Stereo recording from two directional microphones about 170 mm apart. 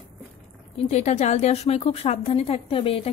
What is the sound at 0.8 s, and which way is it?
A woman's voice, 40° left (ahead or behind).